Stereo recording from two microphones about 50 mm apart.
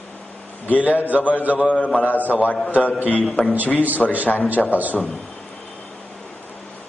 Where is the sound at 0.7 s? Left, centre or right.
Right.